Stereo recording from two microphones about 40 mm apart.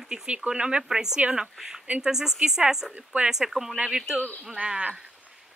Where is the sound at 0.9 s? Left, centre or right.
Centre.